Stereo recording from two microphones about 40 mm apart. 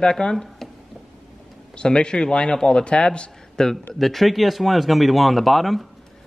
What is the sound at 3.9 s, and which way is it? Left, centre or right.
Speech, centre.